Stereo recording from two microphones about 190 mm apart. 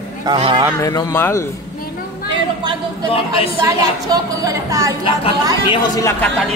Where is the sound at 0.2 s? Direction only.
25° right (ahead or behind).